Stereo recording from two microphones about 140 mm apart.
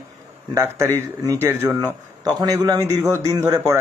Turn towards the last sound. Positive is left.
turn(degrees=-25)  # may be behind; listen again after turning